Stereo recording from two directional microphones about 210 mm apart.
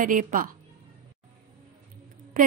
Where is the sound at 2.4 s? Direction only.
40° right (ahead or behind).